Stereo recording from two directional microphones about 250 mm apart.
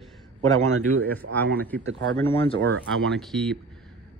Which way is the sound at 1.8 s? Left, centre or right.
Right.